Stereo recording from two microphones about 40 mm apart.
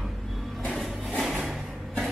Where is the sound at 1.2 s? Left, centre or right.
Centre.